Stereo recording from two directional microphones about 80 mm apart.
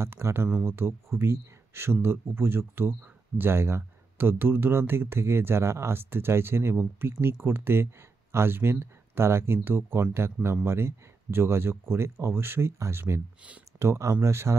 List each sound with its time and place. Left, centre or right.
0.0 s speech: right